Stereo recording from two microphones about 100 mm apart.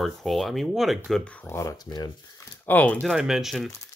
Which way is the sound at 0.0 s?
Centre (ahead or behind).